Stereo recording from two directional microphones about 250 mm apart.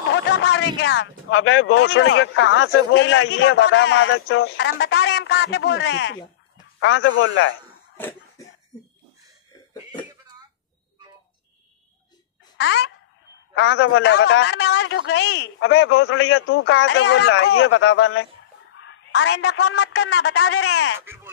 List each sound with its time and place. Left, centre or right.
0.1 s a sound: left
0.7 s speech: left
12.5 s speech: left
18.8 s a sound: left
19.4 s speech: left
20.2 s speech: left
21.0 s speech: centre